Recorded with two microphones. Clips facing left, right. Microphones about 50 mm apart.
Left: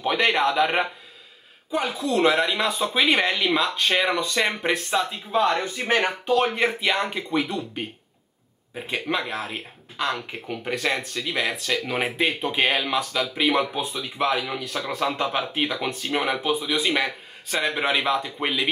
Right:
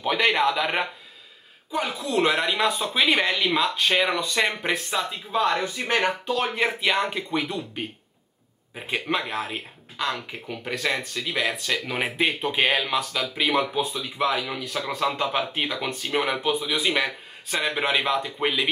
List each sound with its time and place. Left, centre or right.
0.0 s speech: centre